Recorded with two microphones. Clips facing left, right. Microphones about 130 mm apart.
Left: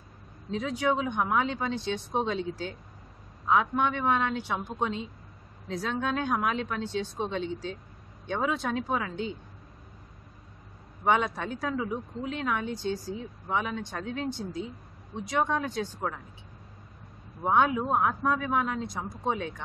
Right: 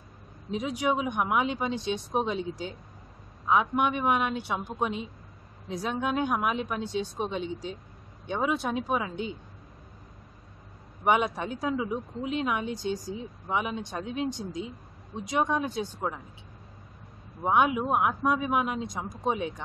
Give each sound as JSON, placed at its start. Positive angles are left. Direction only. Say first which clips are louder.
{"t": 0.5, "sound": "a woman's voice", "louder": "even", "side_deg": -15}
{"t": 11.1, "sound": "a woman's voice", "louder": "right 1 dB", "side_deg": -15}
{"t": 17.4, "sound": "a woman's voice", "louder": "even", "side_deg": -15}